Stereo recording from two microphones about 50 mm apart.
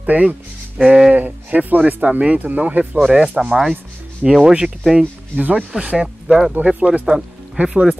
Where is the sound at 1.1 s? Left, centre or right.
Right.